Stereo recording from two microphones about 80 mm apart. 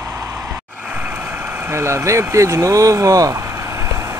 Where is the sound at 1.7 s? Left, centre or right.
Right.